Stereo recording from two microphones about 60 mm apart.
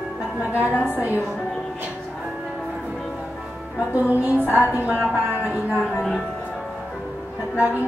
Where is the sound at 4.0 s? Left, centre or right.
Right.